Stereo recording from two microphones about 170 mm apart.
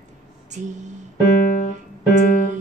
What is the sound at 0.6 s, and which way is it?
Music, 45° right (ahead or behind).